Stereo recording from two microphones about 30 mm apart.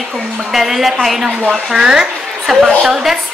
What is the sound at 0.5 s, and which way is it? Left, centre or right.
Speech, centre.